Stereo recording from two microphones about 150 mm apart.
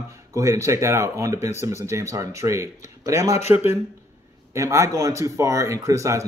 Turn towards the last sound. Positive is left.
turn(degrees=-20)  # may be behind; listen again after turning